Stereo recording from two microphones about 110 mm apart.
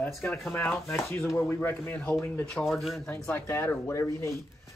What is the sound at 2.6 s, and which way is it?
Speech, centre (ahead or behind).